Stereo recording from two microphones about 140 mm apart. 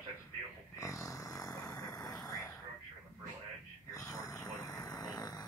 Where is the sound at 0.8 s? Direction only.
25° left (ahead or behind).